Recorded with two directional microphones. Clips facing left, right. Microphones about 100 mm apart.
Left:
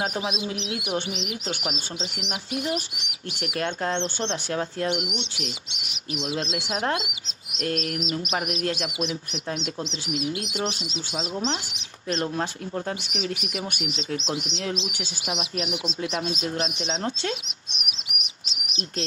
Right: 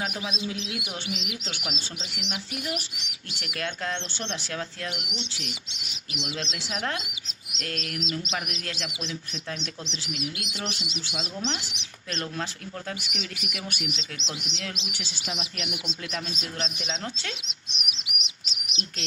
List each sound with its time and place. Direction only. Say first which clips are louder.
0.0 s speech: left 4 dB; 30° left (ahead or behind)
1.0 s speech: left 4 dB; 50° left (ahead or behind)
2.5 s speech: left 8 dB; 25° left (ahead or behind)
5.0 s speech: left 5 dB; 55° left (ahead or behind)
6.3 s speech: left 5 dB; 45° left (ahead or behind)
7.6 s speech: left 7 dB; 25° left (ahead or behind)
11.1 s speech: left 5 dB; 30° left (ahead or behind)
13.8 s speech: left 7 dB; 40° left (ahead or behind)
14.9 s speech: left 4 dB; 50° left (ahead or behind)
16.5 s speech: left 5 dB; 20° left (ahead or behind)
17.7 s chirp: left 1 dB; 45° left (ahead or behind)